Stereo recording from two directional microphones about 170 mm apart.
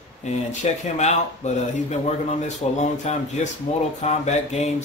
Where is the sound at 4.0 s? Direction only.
40° left (ahead or behind).